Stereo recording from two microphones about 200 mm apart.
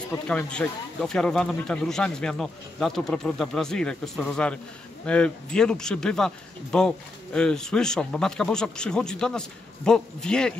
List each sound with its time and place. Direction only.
0.1 s speech: 10° left (ahead or behind)